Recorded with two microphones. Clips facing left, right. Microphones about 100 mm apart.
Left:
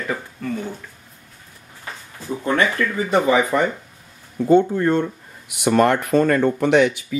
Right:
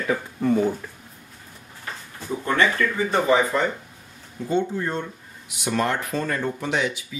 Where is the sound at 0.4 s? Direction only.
25° right (ahead or behind).